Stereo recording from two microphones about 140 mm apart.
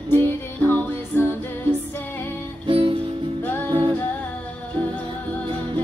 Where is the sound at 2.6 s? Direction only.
40° right (ahead or behind).